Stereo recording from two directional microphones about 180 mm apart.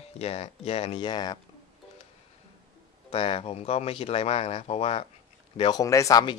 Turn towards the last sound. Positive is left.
turn(degrees=20)  # may be behind; listen again after turning